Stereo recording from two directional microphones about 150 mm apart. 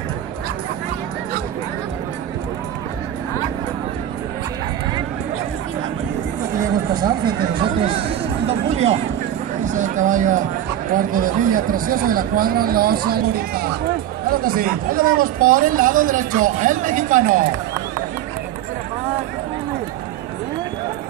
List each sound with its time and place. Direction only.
7.6 s speech: 35° right (ahead or behind)
8.5 s a sound: 45° right (ahead or behind)
9.7 s speech: 55° right (ahead or behind); by 13.7 s 90° right
14.3 s speech: 75° right (ahead or behind)